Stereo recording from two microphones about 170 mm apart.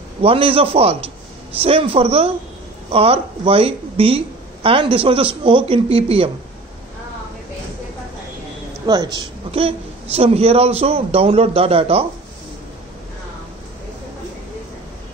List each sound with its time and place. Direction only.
0.2 s speech: 35° right (ahead or behind)
8.8 s speech: 20° right (ahead or behind)
9.5 s speech: 35° right (ahead or behind)